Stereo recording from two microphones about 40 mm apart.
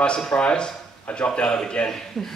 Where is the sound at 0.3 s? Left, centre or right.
Left.